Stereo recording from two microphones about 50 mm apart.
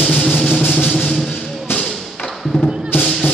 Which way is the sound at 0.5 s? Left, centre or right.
Left.